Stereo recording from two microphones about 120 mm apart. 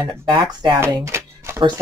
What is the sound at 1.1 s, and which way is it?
Music, 20° right (ahead or behind).